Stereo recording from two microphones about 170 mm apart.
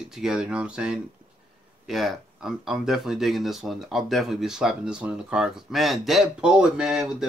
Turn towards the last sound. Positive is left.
turn(degrees=-5)  # may be behind; listen again after turning